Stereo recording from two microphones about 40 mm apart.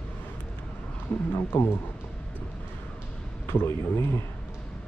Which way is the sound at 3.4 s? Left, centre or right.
Left.